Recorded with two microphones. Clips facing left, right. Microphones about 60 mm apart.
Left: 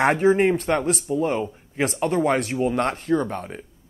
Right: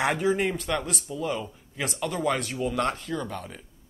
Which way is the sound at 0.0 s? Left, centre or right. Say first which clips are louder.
Left 7 dB; left.